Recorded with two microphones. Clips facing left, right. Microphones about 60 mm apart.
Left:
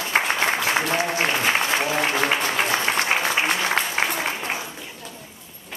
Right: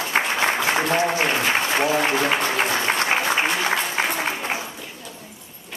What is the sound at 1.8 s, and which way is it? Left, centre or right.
Speech, right.